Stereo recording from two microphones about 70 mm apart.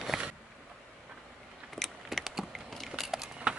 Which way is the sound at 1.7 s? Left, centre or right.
Centre.